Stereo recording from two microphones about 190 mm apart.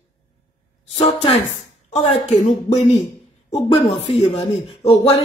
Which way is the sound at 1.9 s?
35° left (ahead or behind).